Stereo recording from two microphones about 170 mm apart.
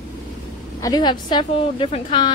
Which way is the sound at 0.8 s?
25° left (ahead or behind).